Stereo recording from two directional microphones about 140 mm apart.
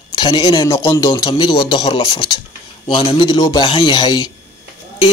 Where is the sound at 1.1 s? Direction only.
35° left (ahead or behind).